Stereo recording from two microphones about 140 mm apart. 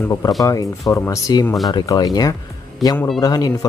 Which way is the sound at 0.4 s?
25° left (ahead or behind).